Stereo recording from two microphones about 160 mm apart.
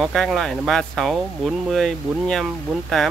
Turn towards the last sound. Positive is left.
turn(degrees=0)  # may be behind; listen again after turning